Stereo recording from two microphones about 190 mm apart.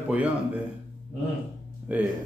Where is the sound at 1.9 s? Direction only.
10° right (ahead or behind).